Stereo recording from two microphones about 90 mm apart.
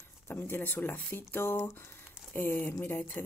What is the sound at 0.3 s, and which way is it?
Speech, 25° left (ahead or behind).